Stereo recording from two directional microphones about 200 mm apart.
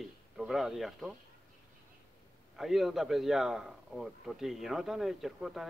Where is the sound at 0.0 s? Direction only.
Centre (ahead or behind).